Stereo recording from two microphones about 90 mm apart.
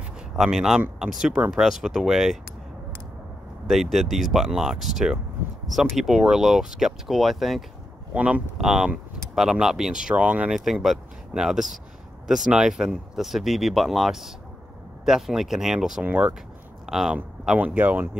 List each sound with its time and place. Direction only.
0.4 s speech: 5° right (ahead or behind)
3.6 s speech: centre (ahead or behind)
8.1 s speech: 15° right (ahead or behind)
16.0 s speech: 15° right (ahead or behind)
16.8 s speech: 5° right (ahead or behind)
17.6 s speech: 20° right (ahead or behind)